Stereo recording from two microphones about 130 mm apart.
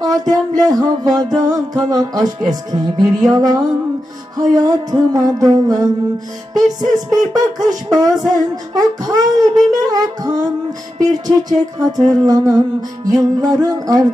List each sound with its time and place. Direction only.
0.0 s music: 30° right (ahead or behind)